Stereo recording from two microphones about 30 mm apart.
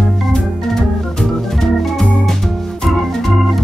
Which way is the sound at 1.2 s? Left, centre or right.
Centre.